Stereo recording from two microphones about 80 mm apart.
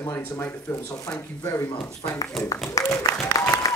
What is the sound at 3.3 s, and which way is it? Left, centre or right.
Applause, left.